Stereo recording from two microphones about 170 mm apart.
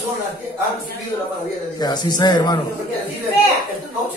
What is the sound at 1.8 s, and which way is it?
Speech, 25° left (ahead or behind).